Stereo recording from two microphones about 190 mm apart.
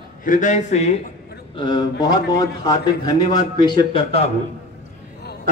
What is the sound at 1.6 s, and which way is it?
A man's voice, 25° left (ahead or behind).